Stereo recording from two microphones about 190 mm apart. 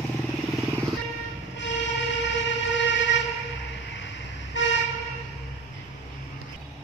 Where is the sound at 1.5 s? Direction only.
70° left (ahead or behind).